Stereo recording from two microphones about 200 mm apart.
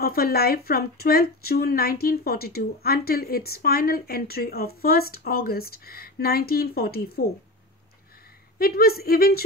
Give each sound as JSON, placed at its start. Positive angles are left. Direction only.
{"t": 0.0, "sound": "speech", "side_deg": 50}
{"t": 8.5, "sound": "speech", "side_deg": 50}